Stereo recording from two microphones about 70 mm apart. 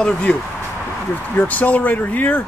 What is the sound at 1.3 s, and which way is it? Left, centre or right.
Speech, left.